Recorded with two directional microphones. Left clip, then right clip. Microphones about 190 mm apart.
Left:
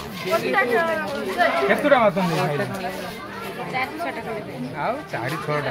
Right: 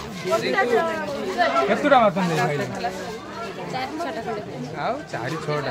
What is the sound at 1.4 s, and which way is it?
Speech, 20° right (ahead or behind).